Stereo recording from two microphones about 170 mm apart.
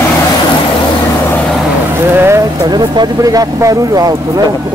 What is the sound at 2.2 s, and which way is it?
Speech, 20° right (ahead or behind).